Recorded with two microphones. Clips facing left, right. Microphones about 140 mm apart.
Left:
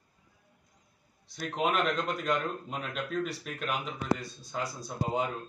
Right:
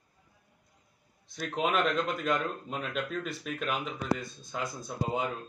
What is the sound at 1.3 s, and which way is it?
A man's voice, centre (ahead or behind).